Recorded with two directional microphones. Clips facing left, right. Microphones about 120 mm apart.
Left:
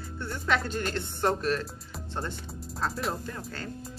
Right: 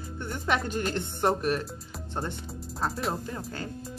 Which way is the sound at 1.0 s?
15° right (ahead or behind).